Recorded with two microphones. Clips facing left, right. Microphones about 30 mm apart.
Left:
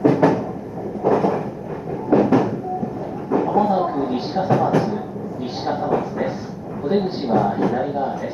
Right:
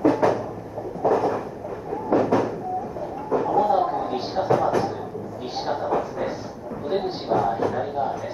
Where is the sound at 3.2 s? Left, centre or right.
Centre.